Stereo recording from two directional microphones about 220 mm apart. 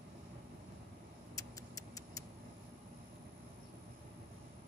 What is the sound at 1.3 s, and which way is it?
Tick-tock, 15° left (ahead or behind).